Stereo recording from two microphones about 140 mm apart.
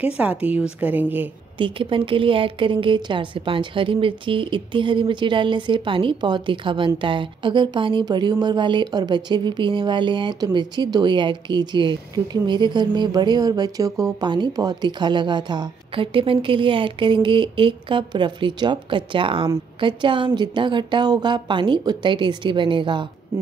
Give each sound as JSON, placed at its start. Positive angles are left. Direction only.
{"t": 0.0, "sound": "a woman's voice", "side_deg": -10}
{"t": 1.6, "sound": "speech", "side_deg": -40}